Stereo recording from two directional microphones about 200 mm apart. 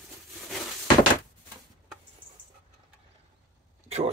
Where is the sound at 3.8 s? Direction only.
30° right (ahead or behind).